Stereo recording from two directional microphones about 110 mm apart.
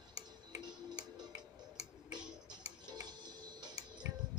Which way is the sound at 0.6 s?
40° right (ahead or behind).